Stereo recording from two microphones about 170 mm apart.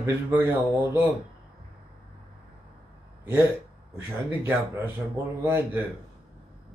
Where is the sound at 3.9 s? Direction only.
15° right (ahead or behind).